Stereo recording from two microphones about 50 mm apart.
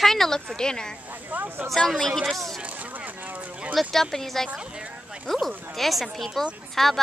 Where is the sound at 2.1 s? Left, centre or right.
Centre.